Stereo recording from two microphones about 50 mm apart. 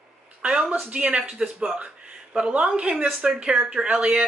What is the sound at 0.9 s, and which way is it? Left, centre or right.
A woman's voice, right.